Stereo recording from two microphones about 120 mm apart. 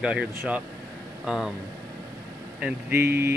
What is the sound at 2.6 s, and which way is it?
Speech, 20° right (ahead or behind).